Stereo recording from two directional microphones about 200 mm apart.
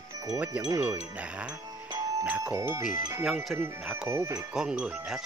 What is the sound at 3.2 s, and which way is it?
Speech, centre (ahead or behind).